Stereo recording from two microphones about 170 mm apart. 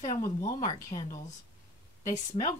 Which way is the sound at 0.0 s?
50° left (ahead or behind).